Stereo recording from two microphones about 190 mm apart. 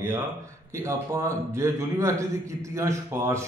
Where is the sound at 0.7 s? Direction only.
15° right (ahead or behind).